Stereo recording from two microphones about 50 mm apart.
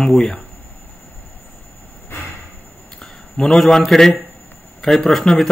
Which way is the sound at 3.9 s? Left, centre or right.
Centre.